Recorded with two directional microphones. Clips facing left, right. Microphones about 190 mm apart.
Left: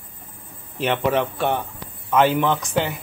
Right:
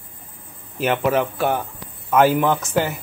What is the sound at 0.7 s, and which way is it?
Speech, 5° right (ahead or behind).